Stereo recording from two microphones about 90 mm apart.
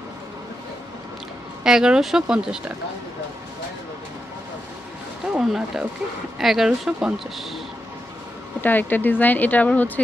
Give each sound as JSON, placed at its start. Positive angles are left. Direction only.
{"t": 1.6, "sound": "speech", "side_deg": -5}
{"t": 5.4, "sound": "speech", "side_deg": -5}
{"t": 8.5, "sound": "speech", "side_deg": 20}